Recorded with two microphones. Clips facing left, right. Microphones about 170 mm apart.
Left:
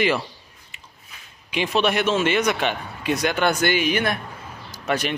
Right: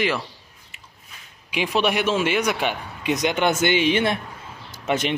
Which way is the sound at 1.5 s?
10° right (ahead or behind).